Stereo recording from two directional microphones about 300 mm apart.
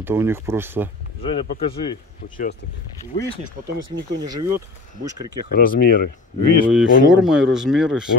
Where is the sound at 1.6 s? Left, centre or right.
Centre.